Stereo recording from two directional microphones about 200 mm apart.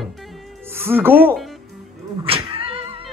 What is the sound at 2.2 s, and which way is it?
Cat, 25° right (ahead or behind).